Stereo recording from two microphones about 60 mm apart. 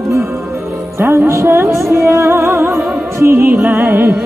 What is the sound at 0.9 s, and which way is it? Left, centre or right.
Music, right.